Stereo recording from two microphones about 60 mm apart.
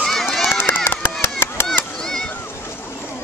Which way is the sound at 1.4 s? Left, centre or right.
Left.